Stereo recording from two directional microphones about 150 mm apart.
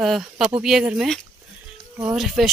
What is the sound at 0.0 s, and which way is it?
Speech, centre (ahead or behind).